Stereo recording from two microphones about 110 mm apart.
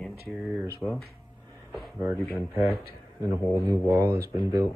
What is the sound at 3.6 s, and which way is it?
Speech, 25° right (ahead or behind).